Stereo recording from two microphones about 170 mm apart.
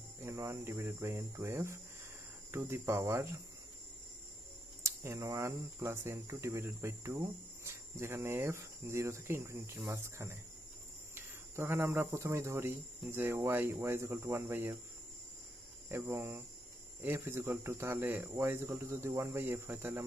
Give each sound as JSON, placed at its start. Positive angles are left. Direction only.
{"t": 0.2, "sound": "speech", "side_deg": -15}
{"t": 4.8, "sound": "speech", "side_deg": -15}
{"t": 15.9, "sound": "speech", "side_deg": -15}